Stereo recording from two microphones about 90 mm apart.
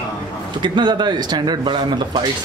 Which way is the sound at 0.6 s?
55° right (ahead or behind).